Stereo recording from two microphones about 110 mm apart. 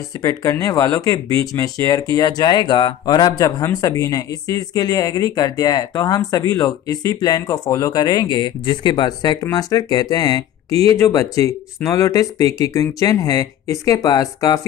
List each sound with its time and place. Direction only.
0.2 s speech: 30° left (ahead or behind)